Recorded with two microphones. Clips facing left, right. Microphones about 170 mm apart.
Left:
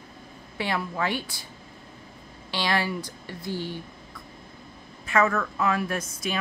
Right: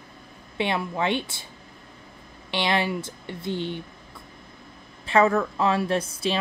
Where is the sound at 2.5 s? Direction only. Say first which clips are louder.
Right 2 dB; 20° right (ahead or behind).